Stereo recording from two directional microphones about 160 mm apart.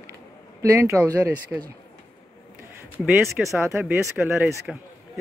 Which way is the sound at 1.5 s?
5° right (ahead or behind).